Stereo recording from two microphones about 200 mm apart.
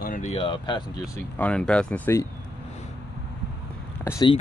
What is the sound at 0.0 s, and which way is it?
Speech, 40° left (ahead or behind).